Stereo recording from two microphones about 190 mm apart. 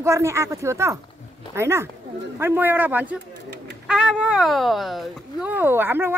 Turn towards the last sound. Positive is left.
turn(degrees=-10)  # may be behind; listen again after turning